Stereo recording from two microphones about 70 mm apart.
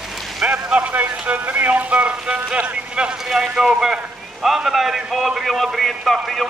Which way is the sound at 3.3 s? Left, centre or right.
Centre.